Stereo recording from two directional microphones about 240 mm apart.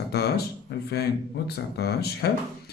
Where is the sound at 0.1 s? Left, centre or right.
Left.